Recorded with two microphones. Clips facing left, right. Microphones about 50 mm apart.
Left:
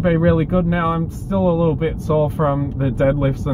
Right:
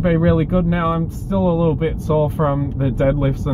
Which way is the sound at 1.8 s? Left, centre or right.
Centre.